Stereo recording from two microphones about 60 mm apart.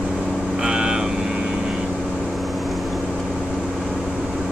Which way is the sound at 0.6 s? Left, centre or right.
Centre.